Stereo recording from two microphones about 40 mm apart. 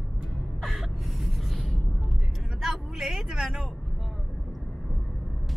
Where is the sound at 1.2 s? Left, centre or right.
Centre.